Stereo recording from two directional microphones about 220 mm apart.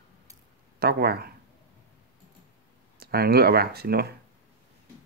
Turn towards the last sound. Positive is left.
turn(degrees=-45)  # may be behind; listen again after turning